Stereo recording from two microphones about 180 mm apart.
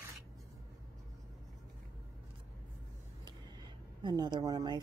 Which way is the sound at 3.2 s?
25° right (ahead or behind).